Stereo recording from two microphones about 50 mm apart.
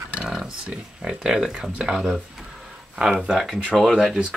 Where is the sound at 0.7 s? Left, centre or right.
Centre.